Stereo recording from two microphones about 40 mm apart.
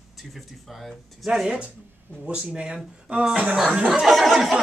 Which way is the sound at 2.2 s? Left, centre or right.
Right.